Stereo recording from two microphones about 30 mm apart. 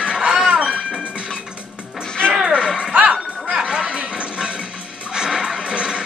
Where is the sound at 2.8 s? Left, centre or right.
Right.